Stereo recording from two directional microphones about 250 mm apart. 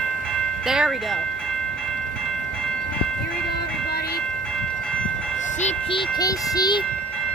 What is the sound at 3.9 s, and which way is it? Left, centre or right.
Train, left.